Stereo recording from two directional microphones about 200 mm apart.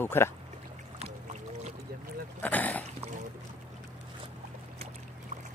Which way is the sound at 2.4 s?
10° left (ahead or behind).